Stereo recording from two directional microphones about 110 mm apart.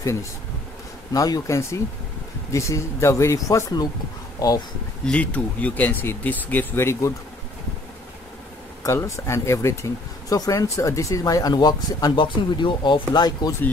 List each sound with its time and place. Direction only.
1.1 s speech: 35° left (ahead or behind)
5.0 s speech: 10° left (ahead or behind)
8.8 s speech: 25° left (ahead or behind)